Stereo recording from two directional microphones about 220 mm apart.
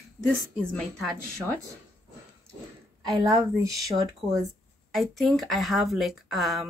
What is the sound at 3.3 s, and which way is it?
Speech, 15° right (ahead or behind).